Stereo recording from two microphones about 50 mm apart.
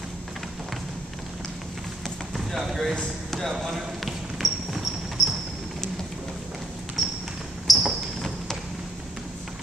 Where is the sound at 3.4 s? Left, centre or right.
Centre.